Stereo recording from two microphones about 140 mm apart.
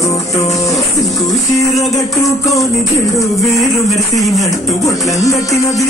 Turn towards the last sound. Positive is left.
turn(degrees=25)  # may be behind; listen again after turning